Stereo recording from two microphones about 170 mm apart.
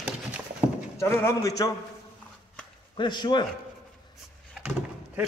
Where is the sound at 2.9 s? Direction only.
25° left (ahead or behind).